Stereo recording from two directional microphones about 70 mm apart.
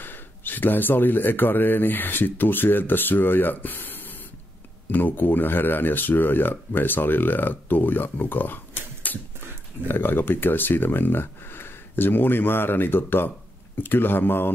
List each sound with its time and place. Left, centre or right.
0.0 s speech: left
9.1 s a sound: left
9.8 s speech: left